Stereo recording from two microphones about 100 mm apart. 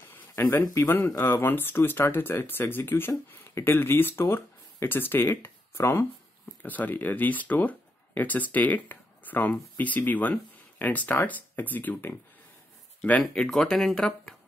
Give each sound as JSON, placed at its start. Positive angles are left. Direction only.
{"t": 0.4, "sound": "speech", "side_deg": 25}
{"t": 13.2, "sound": "speech", "side_deg": 5}